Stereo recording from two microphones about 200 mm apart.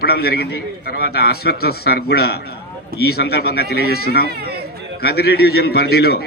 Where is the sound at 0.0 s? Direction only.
50° left (ahead or behind).